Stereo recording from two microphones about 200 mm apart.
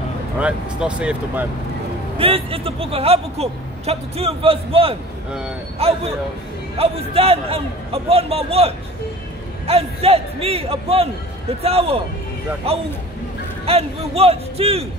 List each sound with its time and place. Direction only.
0.4 s speech: 5° right (ahead or behind)
2.1 s speech: 30° right (ahead or behind)